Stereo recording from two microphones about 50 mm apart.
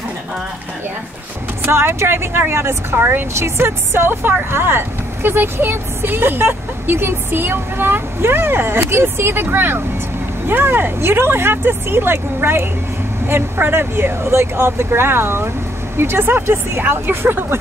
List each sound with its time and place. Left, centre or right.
1.7 s speech: right